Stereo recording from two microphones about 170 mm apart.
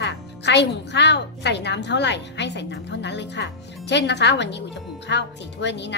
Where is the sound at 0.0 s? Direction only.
90° left.